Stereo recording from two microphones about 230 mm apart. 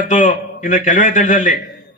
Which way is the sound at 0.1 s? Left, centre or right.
Left.